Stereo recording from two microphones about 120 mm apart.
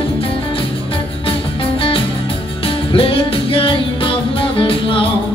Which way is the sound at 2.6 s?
50° left (ahead or behind).